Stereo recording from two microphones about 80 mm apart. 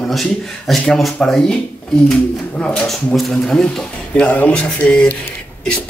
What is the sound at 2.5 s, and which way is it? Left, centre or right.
A man's voice, centre.